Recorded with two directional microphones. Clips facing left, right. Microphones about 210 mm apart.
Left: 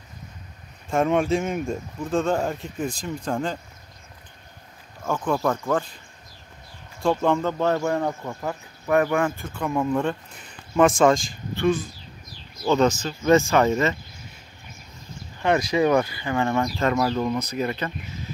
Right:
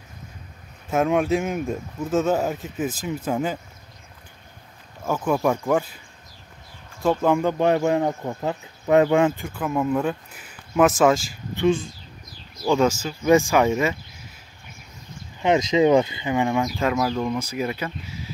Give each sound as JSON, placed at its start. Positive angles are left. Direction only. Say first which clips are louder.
{"t": 0.8, "sound": "speech", "louder": "right 1 dB", "side_deg": 0}
{"t": 5.0, "sound": "speech", "louder": "right 2 dB", "side_deg": -5}
{"t": 7.0, "sound": "speech", "louder": "right 1 dB", "side_deg": -5}
{"t": 7.3, "sound": "speech", "louder": "right 3 dB", "side_deg": -15}
{"t": 9.5, "sound": "speech", "louder": "right 1 dB", "side_deg": -5}
{"t": 11.5, "sound": "speech", "louder": "right 2 dB", "side_deg": -25}
{"t": 12.7, "sound": "speech", "louder": "even", "side_deg": -10}
{"t": 15.3, "sound": "speech", "louder": "right 2 dB", "side_deg": -20}